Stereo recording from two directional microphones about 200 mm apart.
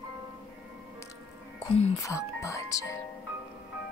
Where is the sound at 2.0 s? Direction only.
15° left (ahead or behind).